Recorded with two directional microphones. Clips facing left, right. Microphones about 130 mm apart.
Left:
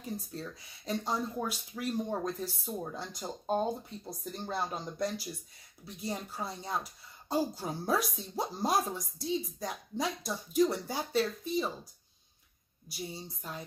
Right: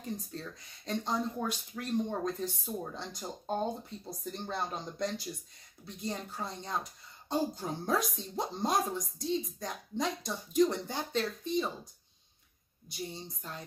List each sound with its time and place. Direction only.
0.0 s speech: 10° left (ahead or behind)
12.9 s speech: 10° left (ahead or behind)